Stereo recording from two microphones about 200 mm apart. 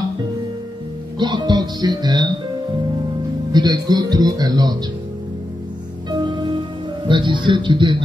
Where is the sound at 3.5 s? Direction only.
20° right (ahead or behind).